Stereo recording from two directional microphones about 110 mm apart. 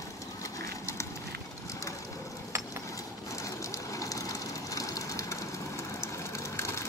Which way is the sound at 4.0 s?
30° left (ahead or behind).